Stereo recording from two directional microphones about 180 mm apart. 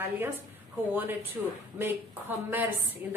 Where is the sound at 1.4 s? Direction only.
10° right (ahead or behind).